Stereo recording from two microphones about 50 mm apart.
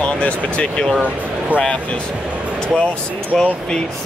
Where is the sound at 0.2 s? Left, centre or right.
Left.